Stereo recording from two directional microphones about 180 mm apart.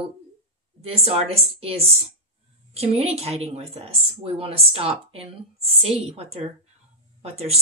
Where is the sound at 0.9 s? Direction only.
35° right (ahead or behind).